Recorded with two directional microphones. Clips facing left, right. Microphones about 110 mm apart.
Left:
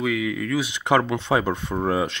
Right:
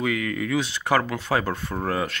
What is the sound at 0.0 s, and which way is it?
Speech, 5° left (ahead or behind).